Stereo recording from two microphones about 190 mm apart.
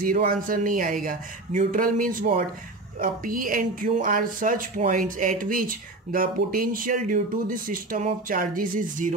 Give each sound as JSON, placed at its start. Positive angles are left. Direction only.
{"t": 0.0, "sound": "a woman's voice", "side_deg": -45}